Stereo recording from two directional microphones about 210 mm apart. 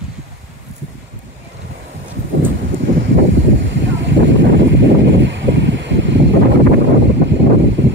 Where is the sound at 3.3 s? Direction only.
60° right (ahead or behind).